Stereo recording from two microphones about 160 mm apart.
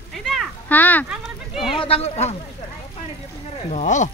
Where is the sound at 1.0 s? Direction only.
5° right (ahead or behind).